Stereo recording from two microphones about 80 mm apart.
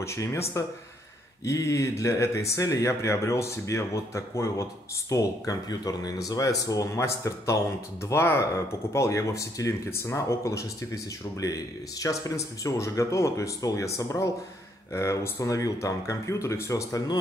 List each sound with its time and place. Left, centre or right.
0.0 s speech: left
14.9 s speech: left